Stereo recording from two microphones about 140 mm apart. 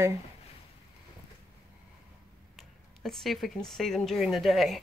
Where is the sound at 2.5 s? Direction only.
Centre (ahead or behind).